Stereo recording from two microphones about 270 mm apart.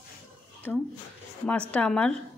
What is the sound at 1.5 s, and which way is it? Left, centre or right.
Speech, centre.